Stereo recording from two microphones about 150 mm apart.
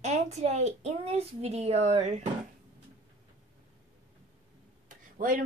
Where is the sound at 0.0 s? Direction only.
50° right (ahead or behind).